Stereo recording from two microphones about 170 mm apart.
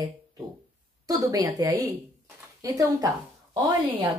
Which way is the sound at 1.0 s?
20° right (ahead or behind).